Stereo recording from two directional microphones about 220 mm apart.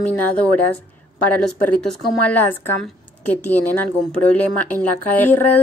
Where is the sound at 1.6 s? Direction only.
5° left (ahead or behind).